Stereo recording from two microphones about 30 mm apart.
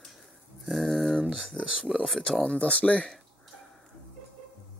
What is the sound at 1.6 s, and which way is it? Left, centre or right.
Speech, left.